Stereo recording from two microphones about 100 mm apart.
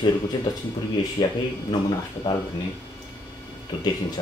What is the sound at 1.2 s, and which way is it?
Speech, 45° left (ahead or behind).